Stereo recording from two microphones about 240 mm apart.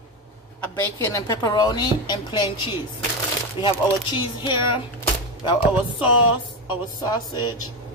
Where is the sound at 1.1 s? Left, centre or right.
Centre.